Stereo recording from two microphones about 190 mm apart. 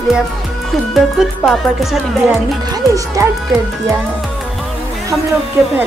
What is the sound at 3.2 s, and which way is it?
Speech, 15° right (ahead or behind).